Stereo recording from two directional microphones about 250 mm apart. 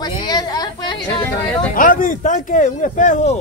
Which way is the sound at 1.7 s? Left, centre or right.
Left.